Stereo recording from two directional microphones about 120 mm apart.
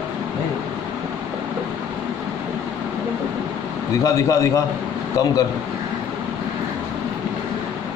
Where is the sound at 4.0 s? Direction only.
30° left (ahead or behind).